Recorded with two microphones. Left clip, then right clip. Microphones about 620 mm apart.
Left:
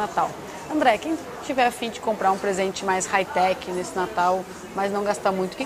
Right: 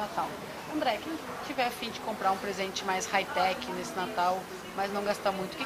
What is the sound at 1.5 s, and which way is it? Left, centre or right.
A woman's voice, left.